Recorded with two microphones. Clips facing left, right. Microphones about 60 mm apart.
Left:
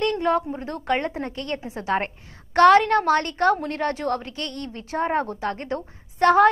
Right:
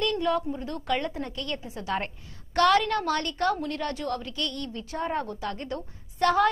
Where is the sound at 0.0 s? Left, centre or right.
Left.